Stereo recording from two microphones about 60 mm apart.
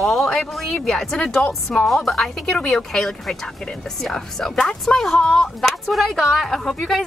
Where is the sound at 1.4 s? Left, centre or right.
Left.